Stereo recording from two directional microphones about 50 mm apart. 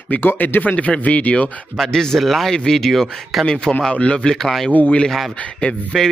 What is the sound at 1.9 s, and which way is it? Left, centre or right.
Speech, centre.